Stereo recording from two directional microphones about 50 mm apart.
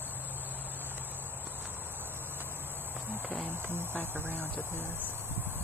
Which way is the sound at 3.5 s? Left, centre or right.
Right.